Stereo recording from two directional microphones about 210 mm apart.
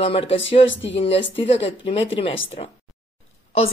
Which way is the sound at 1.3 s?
30° left (ahead or behind).